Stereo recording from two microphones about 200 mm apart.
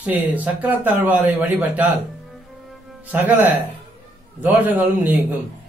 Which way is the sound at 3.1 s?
10° right (ahead or behind).